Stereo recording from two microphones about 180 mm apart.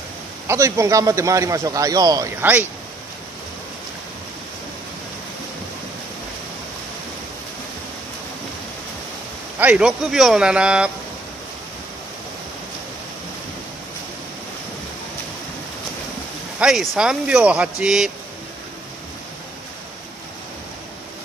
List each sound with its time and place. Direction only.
0.5 s a man's voice: 15° right (ahead or behind)
9.6 s speech: 5° right (ahead or behind)
16.5 s speech: centre (ahead or behind)